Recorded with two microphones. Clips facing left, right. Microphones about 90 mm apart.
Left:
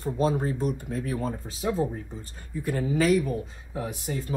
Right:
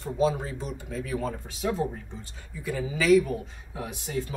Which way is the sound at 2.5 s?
50° left (ahead or behind).